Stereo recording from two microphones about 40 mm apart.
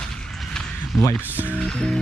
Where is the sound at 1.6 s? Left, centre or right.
Left.